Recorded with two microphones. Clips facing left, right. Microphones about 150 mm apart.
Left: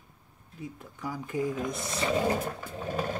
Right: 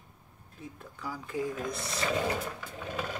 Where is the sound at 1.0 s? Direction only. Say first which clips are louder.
Left 3 dB; 20° left (ahead or behind).